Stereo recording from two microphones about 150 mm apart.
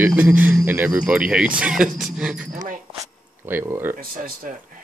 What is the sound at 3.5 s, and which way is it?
Speech, 15° right (ahead or behind).